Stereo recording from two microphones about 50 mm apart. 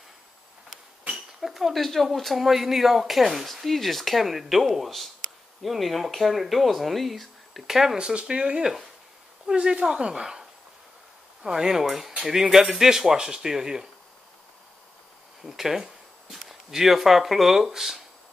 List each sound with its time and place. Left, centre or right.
1.1 s speech: centre
11.4 s speech: centre
15.4 s speech: centre